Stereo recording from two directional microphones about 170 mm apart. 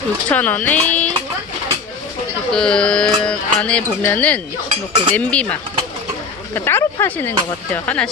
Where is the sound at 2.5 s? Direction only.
5° left (ahead or behind).